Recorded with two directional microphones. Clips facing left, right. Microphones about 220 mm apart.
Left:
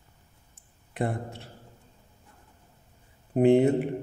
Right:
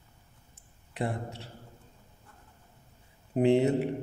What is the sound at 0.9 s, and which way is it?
Speech, 50° left (ahead or behind).